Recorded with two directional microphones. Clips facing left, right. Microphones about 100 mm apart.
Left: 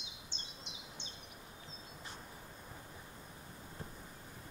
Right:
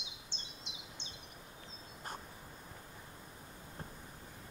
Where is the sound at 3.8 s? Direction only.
50° right (ahead or behind).